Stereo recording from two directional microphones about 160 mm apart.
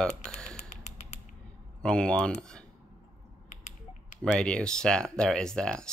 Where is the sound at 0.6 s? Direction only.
45° left (ahead or behind).